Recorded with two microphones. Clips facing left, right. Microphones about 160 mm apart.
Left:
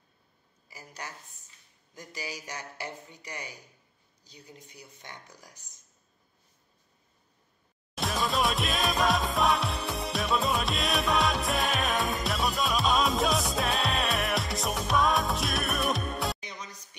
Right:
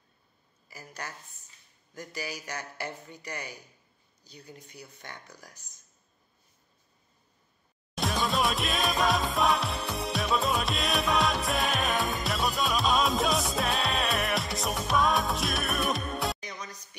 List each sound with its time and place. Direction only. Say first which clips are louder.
0.7 s a woman's voice: right 1 dB; 20° left (ahead or behind)
7.9 s music: right 1 dB; centre (ahead or behind)